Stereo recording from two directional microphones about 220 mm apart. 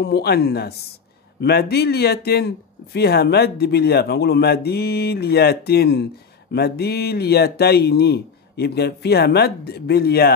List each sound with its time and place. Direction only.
0.0 s speech: 45° left (ahead or behind)